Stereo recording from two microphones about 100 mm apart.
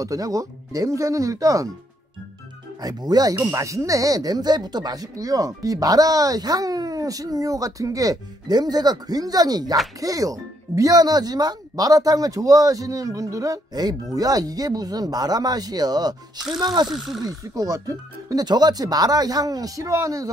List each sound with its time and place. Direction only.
0.0 s speech: 35° right (ahead or behind)
2.8 s speech: 40° right (ahead or behind)
16.9 s speech: centre (ahead or behind)
17.2 s speech: 35° right (ahead or behind)